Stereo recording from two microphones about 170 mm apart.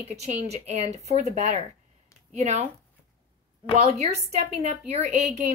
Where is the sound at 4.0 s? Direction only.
40° right (ahead or behind).